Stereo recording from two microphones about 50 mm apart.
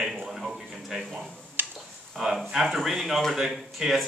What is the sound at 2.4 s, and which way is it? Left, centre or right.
A man's voice, centre.